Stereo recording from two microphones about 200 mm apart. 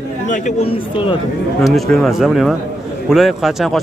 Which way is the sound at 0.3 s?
30° left (ahead or behind).